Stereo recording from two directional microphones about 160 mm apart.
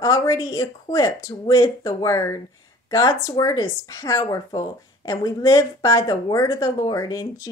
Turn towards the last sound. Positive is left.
turn(degrees=20)  # may be behind; listen again after turning